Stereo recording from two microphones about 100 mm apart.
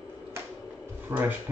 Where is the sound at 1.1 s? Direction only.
20° right (ahead or behind).